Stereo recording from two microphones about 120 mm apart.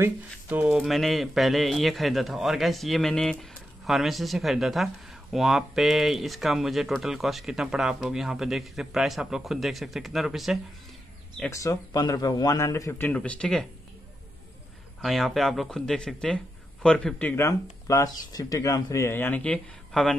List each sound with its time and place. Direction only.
0.0 s speech: 15° right (ahead or behind)
11.5 s speech: 25° left (ahead or behind)
12.9 s speech: 15° left (ahead or behind)
15.0 s speech: centre (ahead or behind)
17.4 s speech: 25° left (ahead or behind); by 20.2 s 5° left (ahead or behind)